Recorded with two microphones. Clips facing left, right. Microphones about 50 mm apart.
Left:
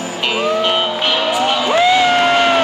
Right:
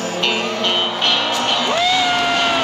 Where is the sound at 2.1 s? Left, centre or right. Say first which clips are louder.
Left 5 dB; left.